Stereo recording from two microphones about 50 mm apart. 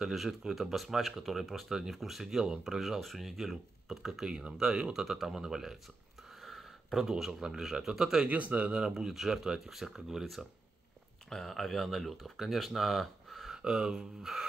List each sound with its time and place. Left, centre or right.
0.0 s speech: centre
4.3 s speech: centre
4.9 s speech: centre
8.3 s a man's voice: right
8.7 s speech: centre
11.2 s speech: centre
13.6 s speech: centre